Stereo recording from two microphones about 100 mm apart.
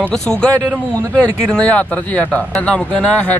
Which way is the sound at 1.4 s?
10° left (ahead or behind).